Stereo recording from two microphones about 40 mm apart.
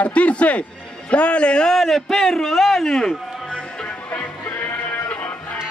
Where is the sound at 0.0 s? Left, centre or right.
Left.